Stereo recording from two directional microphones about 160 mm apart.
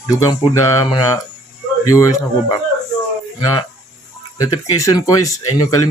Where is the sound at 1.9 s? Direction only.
20° left (ahead or behind).